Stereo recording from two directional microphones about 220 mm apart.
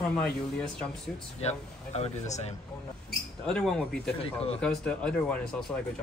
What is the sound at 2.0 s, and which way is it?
Speech, 30° left (ahead or behind).